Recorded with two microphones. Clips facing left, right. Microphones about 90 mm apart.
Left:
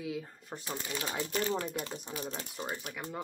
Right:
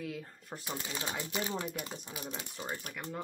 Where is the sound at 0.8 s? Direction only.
20° right (ahead or behind).